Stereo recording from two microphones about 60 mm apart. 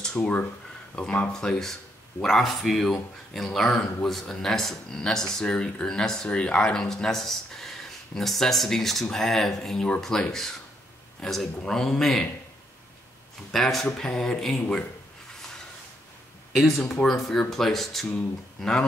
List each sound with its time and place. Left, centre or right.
0.0 s speech: centre
13.5 s speech: centre
16.5 s speech: centre